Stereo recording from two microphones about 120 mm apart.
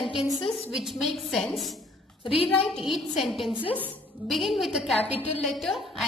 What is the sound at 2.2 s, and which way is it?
Speech, 50° left (ahead or behind).